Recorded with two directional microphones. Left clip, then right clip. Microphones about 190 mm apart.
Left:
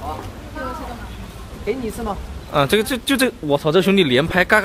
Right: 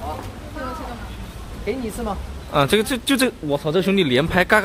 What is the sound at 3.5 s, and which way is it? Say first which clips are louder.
Speech: left 4 dB; 25° left (ahead or behind).